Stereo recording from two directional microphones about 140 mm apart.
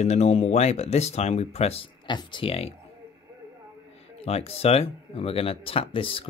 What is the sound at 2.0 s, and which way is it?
Speech, 35° left (ahead or behind).